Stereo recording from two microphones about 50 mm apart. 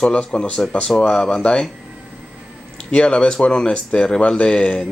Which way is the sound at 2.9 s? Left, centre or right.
Left.